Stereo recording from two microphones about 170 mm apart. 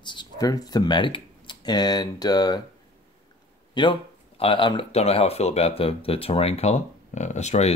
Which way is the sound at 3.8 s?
25° left (ahead or behind).